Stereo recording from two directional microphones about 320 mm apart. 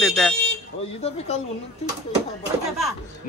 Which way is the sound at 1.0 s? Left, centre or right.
Centre.